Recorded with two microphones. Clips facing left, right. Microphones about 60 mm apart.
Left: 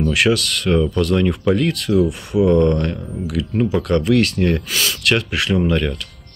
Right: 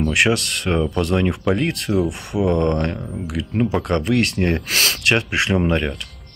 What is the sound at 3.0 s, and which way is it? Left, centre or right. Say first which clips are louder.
Speech: left 3 dB; centre.